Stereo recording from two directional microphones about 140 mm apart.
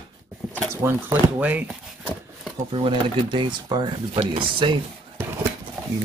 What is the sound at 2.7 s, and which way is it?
Speech, 35° right (ahead or behind).